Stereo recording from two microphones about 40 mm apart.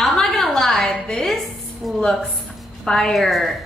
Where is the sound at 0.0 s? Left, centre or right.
Centre.